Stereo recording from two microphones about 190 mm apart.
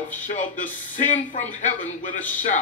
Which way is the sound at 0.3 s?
45° left (ahead or behind).